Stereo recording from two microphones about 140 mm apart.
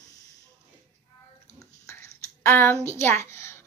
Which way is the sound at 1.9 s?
20° left (ahead or behind).